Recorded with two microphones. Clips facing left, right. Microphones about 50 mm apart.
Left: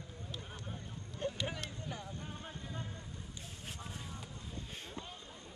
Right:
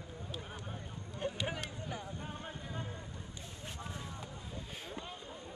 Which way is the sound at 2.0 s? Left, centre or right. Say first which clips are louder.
Right 2 dB; centre.